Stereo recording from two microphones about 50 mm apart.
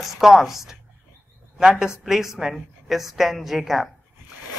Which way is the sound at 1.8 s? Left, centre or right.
Centre.